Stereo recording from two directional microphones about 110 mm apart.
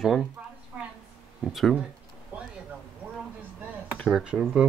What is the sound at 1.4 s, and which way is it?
Speech, centre (ahead or behind).